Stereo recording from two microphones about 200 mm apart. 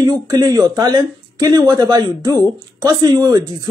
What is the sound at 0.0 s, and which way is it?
Speech, 20° right (ahead or behind).